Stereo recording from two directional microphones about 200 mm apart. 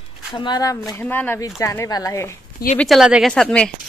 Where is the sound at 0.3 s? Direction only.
25° left (ahead or behind).